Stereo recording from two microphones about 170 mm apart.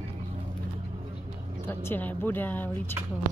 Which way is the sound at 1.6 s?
10° left (ahead or behind).